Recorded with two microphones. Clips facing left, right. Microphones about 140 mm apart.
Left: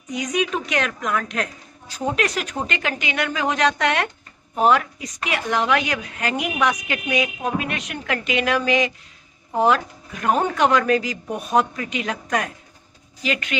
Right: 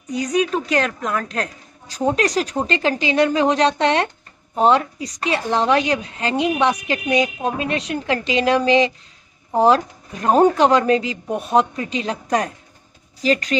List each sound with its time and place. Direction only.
0.1 s a woman's voice: 35° right (ahead or behind)